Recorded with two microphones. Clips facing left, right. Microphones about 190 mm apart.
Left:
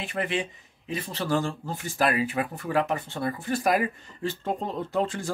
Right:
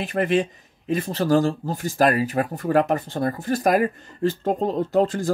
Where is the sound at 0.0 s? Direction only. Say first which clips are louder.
Right 8 dB; 45° right (ahead or behind).